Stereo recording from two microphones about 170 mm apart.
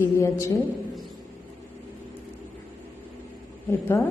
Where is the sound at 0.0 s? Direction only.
15° left (ahead or behind).